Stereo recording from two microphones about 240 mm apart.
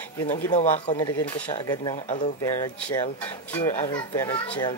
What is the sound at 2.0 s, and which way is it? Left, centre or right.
Speech, left.